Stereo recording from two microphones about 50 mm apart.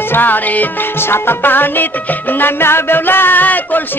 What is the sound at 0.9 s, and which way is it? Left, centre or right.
Music, left.